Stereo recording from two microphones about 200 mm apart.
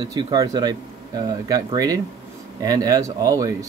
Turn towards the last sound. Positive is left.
turn(degrees=-15)  # may be behind; listen again after turning